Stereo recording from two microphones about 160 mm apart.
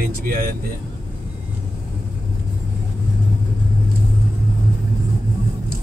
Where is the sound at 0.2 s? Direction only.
65° right (ahead or behind).